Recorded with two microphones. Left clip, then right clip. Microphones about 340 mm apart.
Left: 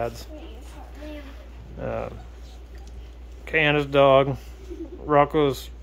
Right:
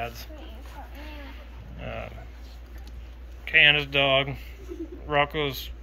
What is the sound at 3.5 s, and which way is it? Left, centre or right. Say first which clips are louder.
Speech: right 3 dB; left.